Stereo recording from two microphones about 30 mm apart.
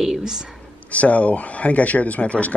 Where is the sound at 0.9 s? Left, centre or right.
Left.